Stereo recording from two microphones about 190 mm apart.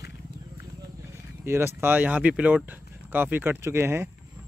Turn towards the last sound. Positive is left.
turn(degrees=-15)  # may be behind; listen again after turning